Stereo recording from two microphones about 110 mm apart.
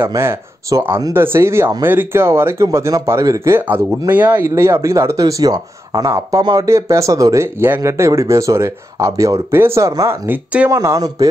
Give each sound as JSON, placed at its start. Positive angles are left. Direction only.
{"t": 0.0, "sound": "speech", "side_deg": -25}
{"t": 10.7, "sound": "speech", "side_deg": -25}